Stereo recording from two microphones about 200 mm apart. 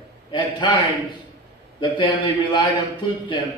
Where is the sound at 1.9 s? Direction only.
25° left (ahead or behind).